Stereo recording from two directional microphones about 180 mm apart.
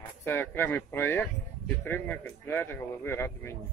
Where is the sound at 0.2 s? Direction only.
10° left (ahead or behind).